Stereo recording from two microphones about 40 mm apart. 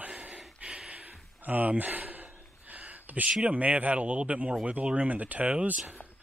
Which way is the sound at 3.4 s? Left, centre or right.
Right.